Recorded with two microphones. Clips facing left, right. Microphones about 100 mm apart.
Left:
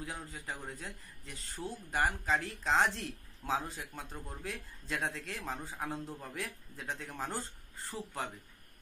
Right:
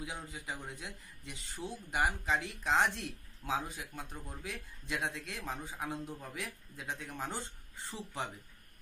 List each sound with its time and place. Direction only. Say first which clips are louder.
0.0 s speech: even; 15° right (ahead or behind)
7.3 s speech: left 2 dB; 20° right (ahead or behind)